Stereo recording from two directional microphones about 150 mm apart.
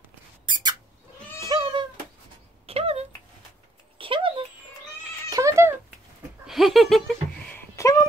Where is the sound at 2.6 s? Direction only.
40° right (ahead or behind).